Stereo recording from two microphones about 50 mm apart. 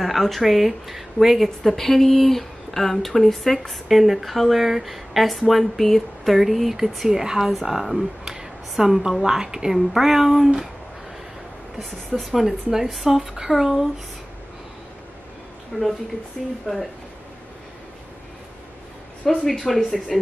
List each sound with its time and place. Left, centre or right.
0.0 s speech: centre
8.3 s a sound: centre
12.3 s speech: centre
15.7 s speech: left
16.4 s speech: centre
19.2 s speech: centre